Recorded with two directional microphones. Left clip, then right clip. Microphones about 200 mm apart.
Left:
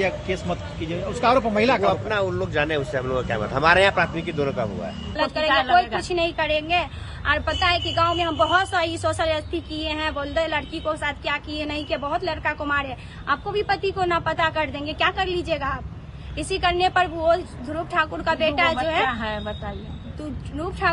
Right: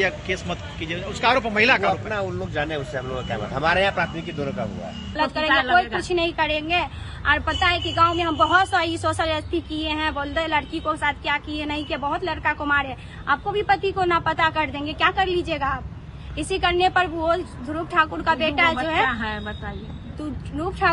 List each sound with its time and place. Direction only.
0.0 s speech: 35° left (ahead or behind)
3.1 s speech: 15° left (ahead or behind)
3.6 s a man's voice: 30° left (ahead or behind)
5.1 s a woman's voice: centre (ahead or behind)